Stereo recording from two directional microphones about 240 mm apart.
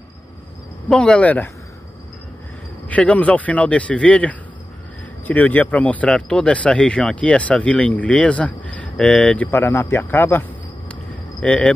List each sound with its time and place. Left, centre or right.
0.8 s speech: centre
2.9 s speech: centre
11.4 s speech: centre